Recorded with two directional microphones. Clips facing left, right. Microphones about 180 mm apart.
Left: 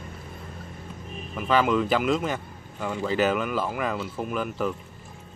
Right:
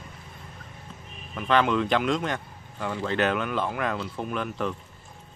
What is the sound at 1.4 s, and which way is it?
Speech, 5° left (ahead or behind).